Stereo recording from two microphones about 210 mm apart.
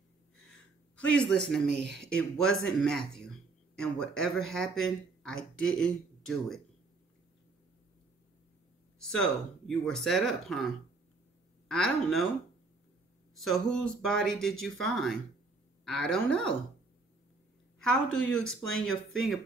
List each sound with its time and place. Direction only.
0.9 s speech: 5° left (ahead or behind)
1.7 s speech: 55° right (ahead or behind)
2.0 s speech: 5° left (ahead or behind)
9.0 s speech: 5° left (ahead or behind)
11.7 s speech: centre (ahead or behind)
13.4 s speech: centre (ahead or behind)
18.4 s speech: 5° left (ahead or behind)